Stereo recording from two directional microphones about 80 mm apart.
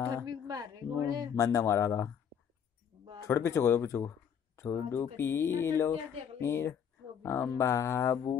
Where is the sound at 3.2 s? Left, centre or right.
Left.